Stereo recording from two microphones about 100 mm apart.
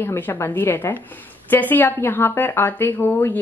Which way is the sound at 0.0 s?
20° left (ahead or behind).